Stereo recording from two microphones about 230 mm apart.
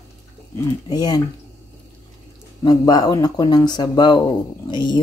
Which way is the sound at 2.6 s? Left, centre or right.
Centre.